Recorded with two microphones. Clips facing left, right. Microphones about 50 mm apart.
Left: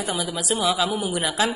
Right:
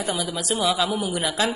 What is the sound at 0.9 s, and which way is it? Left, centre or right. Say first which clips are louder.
Speech: even; centre.